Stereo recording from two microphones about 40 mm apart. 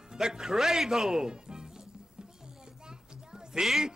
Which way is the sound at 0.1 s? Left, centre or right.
Centre.